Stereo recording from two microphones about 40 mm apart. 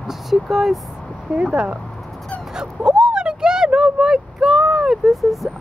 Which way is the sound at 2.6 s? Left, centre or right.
Centre.